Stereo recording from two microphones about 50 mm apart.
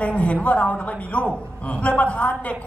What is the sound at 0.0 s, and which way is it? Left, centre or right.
A woman's voice, left.